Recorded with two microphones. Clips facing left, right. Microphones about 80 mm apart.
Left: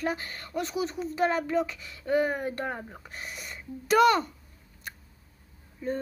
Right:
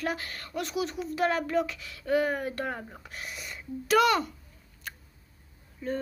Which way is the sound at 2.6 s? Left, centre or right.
Centre.